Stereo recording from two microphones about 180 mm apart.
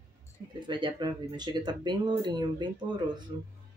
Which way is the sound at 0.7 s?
25° right (ahead or behind).